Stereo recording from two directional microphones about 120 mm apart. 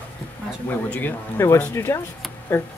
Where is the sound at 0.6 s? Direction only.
15° left (ahead or behind).